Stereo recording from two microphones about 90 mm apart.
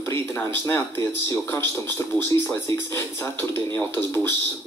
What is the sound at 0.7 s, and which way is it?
Speech, 25° left (ahead or behind).